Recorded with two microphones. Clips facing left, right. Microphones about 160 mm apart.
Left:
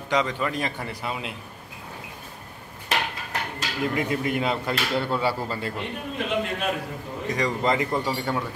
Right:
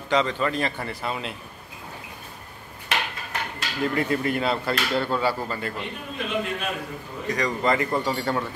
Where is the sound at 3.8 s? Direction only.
15° left (ahead or behind).